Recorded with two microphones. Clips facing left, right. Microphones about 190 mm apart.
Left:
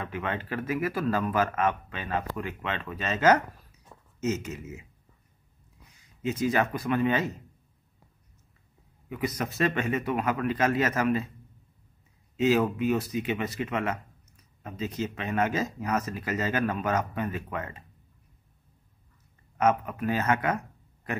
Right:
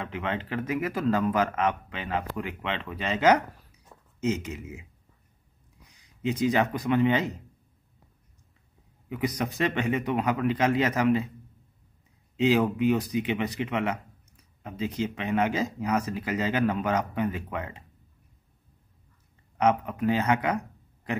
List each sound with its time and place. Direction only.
0.0 s speech: 20° right (ahead or behind)
6.2 s speech: 15° right (ahead or behind)
9.1 s speech: 15° right (ahead or behind)
12.4 s speech: 15° right (ahead or behind)
19.6 s speech: 15° right (ahead or behind)